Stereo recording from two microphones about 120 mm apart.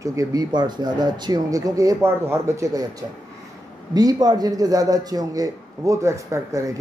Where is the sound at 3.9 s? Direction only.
30° right (ahead or behind).